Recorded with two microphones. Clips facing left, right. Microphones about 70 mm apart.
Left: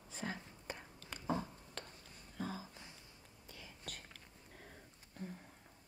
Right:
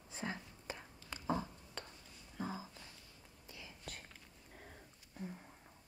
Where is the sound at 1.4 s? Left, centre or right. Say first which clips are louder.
Even; centre.